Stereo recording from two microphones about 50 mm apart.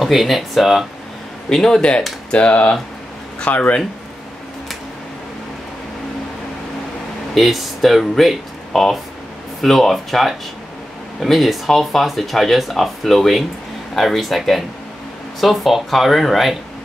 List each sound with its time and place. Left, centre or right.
0.0 s speech: centre
1.5 s speech: centre; by 3.8 s left
7.3 s speech: centre